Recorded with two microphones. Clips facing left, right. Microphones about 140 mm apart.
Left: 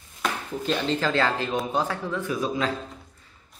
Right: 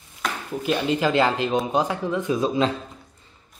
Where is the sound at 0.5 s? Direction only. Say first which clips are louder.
Right 4 dB; 10° right (ahead or behind).